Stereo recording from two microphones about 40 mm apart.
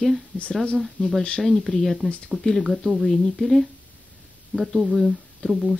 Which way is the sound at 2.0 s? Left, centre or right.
Left.